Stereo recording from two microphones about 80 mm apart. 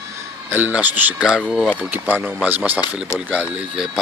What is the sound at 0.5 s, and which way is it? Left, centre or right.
Speech, right.